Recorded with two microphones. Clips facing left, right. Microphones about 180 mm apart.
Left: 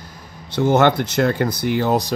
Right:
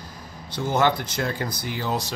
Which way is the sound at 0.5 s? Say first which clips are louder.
Left 7 dB; 65° left (ahead or behind).